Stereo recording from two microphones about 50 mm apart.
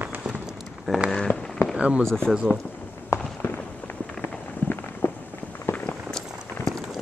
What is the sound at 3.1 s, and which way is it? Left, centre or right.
Walk, left.